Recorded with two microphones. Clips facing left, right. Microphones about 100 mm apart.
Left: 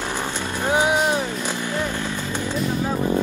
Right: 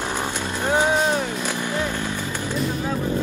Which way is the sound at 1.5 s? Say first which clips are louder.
Even; 15° right (ahead or behind).